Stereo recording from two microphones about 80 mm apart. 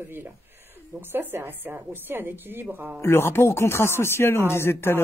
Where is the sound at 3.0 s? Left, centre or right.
Left.